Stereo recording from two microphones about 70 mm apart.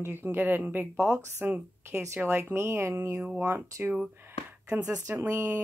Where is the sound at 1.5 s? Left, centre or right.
Right.